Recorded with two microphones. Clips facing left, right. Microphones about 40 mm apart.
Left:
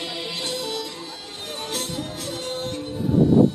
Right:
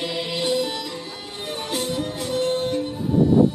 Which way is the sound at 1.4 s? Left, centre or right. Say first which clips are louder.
Right 4 dB; centre.